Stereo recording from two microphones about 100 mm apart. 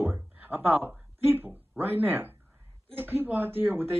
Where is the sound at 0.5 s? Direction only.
20° right (ahead or behind).